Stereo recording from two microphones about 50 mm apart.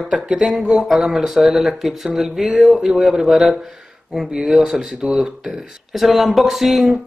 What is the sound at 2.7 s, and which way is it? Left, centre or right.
Speech, centre.